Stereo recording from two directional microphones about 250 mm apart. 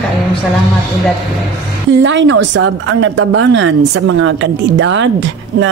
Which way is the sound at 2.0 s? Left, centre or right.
Right.